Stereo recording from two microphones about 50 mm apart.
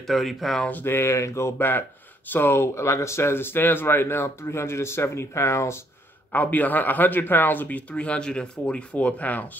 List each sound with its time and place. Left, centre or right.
0.0 s speech: centre
0.8 s speech: left
1.6 s speech: left
2.7 s speech: left
6.3 s speech: left; by 8.8 s centre
8.9 s speech: left